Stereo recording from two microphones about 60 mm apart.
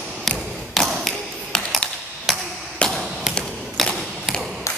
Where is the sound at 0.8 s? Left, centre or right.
Centre.